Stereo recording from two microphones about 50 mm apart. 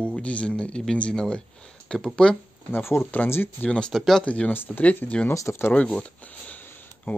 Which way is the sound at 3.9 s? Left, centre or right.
Centre.